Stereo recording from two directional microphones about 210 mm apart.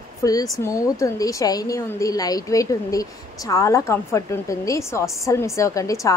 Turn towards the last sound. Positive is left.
turn(degrees=15)  # may be behind; listen again after turning